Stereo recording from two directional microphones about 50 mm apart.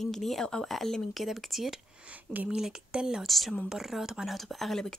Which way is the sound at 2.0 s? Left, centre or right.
Right.